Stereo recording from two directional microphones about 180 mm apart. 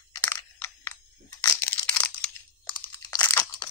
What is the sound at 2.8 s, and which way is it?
Crunch, 10° left (ahead or behind).